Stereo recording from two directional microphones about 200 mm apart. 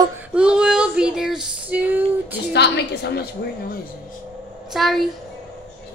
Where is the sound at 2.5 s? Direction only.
55° left (ahead or behind).